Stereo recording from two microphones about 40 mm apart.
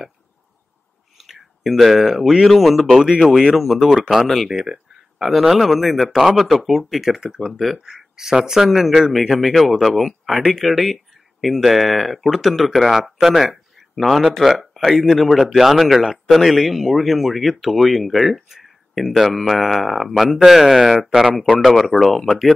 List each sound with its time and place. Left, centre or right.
1.1 s a sound: centre
2.5 s speech: centre
7.2 s speech: centre
7.4 s speech: centre
7.8 s speech: centre